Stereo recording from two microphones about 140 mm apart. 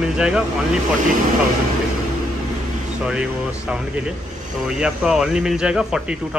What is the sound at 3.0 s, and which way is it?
Speech, 10° right (ahead or behind).